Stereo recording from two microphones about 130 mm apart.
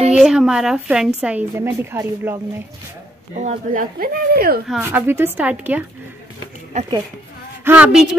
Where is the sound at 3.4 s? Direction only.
90° right.